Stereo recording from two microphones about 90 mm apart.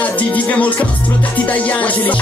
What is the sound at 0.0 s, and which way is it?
Music, 15° left (ahead or behind).